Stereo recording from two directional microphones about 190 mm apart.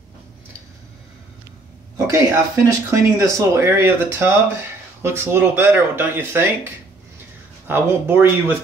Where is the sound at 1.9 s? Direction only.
15° right (ahead or behind).